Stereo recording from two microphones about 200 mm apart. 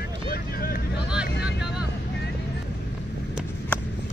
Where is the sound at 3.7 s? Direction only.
5° left (ahead or behind).